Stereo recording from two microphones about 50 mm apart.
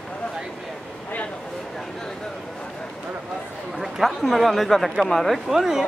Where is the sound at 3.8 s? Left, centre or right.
Centre.